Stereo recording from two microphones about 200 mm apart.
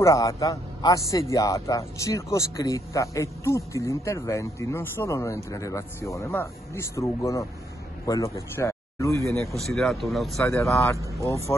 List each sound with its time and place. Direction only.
0.0 s speech: 15° left (ahead or behind)
9.5 s speech: centre (ahead or behind)
10.6 s speech: 15° left (ahead or behind)